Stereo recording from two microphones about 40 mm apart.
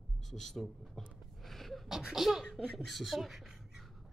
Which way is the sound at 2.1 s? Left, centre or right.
Centre.